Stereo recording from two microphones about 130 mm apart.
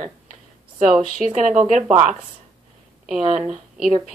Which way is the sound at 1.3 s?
70° right (ahead or behind).